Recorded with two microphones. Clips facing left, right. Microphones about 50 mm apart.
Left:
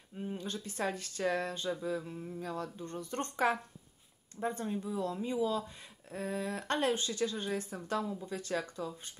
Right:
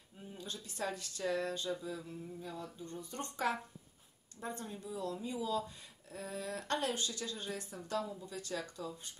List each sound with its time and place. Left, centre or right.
0.3 s a woman's voice: left
2.4 s speech: left
2.8 s speech: left
4.4 s a woman's voice: left